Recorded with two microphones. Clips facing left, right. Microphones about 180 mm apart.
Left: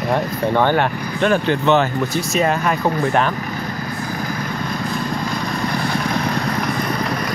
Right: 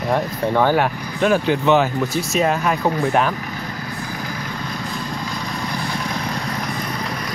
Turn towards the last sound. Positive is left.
turn(degrees=65)  # may be behind; listen again after turning